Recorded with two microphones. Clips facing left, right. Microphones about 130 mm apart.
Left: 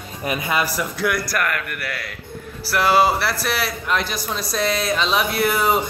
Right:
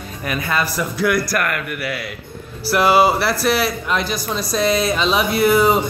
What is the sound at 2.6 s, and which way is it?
Speech, 20° right (ahead or behind).